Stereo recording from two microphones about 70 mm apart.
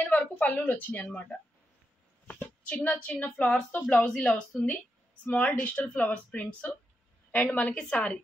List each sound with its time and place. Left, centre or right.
0.0 s a woman's voice: left
7.7 s a woman's voice: centre